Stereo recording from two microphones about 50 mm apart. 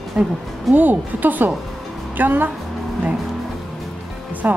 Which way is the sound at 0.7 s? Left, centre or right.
Right.